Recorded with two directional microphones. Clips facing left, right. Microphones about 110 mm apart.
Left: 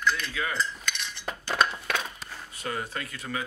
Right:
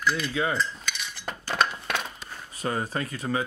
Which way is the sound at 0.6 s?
Centre (ahead or behind).